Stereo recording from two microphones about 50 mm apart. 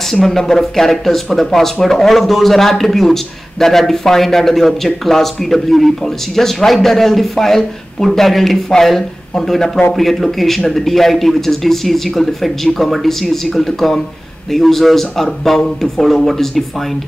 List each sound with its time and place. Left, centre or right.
0.1 s speech: centre